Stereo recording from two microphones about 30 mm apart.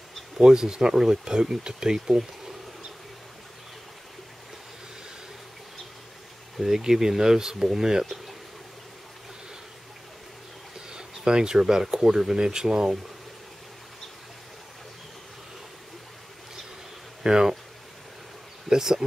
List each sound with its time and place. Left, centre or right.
0.4 s speech: right
6.6 s speech: centre
10.9 s a sound: right
11.5 s speech: centre
17.2 s speech: right
18.7 s speech: centre